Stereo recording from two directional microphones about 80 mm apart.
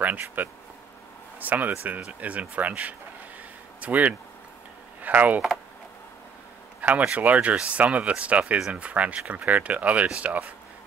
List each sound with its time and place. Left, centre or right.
0.0 s speech: right
2.0 s speech: centre
6.8 s speech: centre